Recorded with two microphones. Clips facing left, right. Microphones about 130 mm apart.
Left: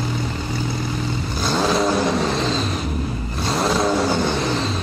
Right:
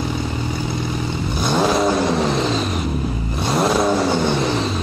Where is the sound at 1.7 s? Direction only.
Centre (ahead or behind).